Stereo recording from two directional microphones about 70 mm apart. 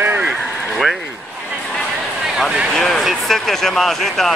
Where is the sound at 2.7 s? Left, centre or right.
Centre.